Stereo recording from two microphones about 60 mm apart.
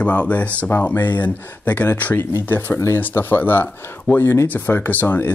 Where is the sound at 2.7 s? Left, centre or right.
Left.